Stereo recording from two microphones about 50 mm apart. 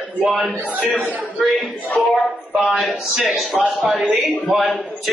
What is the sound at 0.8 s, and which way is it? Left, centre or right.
Speech, right.